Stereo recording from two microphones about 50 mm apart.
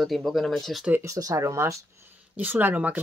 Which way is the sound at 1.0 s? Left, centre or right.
Right.